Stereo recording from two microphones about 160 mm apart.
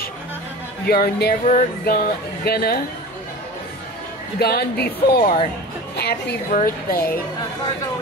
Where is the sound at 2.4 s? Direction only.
75° left (ahead or behind).